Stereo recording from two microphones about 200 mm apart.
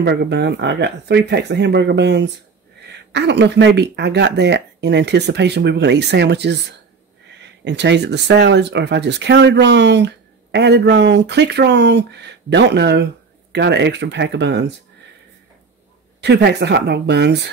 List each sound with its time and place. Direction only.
0.0 s speech: 55° right (ahead or behind)
16.2 s speech: 55° right (ahead or behind)